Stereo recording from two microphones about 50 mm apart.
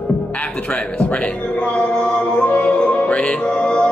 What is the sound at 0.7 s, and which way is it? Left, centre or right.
Speech, left.